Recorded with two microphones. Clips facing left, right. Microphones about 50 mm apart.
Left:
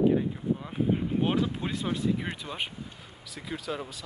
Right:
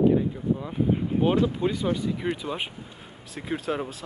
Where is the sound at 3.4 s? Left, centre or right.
Right.